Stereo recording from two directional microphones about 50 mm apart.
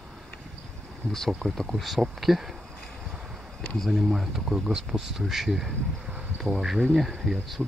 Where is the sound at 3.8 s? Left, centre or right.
Centre.